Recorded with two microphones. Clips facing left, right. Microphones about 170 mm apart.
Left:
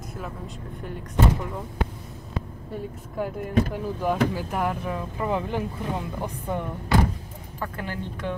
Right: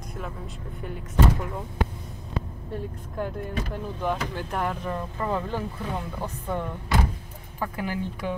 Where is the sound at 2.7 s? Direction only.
5° left (ahead or behind).